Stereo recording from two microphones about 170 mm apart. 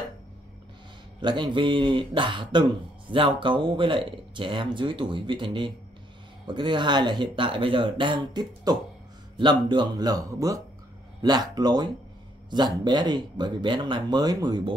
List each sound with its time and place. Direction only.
1.2 s speech: 25° right (ahead or behind)